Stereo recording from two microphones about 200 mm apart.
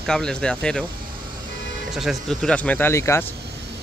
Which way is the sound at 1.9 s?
Centre (ahead or behind).